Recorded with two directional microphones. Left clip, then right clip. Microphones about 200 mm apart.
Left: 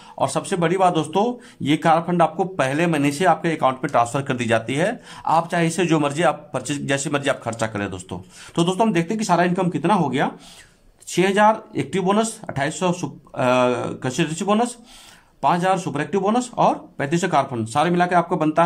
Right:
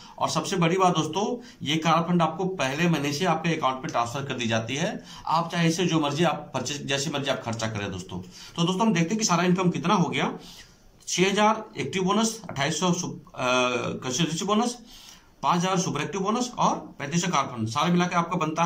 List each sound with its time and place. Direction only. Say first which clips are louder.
0.2 s speech: left 4 dB; 45° left (ahead or behind)